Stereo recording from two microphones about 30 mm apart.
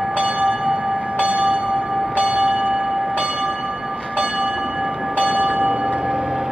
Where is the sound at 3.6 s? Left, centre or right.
Centre.